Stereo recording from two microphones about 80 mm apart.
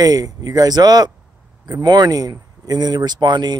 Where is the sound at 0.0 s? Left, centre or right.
Right.